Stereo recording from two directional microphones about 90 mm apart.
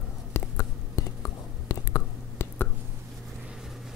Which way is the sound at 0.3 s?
35° left (ahead or behind).